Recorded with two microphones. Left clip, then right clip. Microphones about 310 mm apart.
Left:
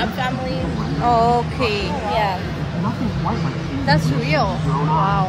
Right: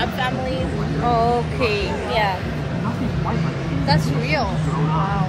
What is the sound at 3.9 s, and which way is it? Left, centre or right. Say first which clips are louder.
Speech: left 2 dB; left.